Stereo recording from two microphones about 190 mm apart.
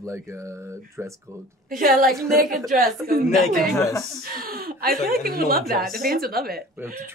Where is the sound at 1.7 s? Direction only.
45° right (ahead or behind).